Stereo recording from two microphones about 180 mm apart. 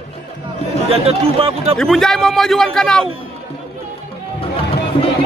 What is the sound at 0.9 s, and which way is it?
Speech, 30° right (ahead or behind).